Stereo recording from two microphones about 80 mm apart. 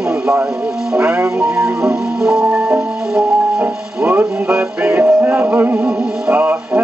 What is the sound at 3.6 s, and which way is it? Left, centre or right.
Music, right.